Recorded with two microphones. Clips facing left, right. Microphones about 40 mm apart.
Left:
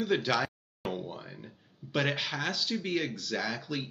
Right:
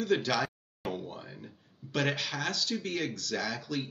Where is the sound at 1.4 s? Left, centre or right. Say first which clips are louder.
Even; centre.